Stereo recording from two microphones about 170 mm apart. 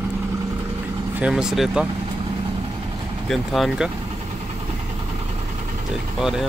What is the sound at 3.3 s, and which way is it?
Speech, centre (ahead or behind).